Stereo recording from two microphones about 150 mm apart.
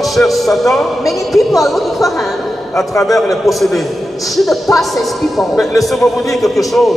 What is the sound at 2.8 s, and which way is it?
Speech, 20° left (ahead or behind).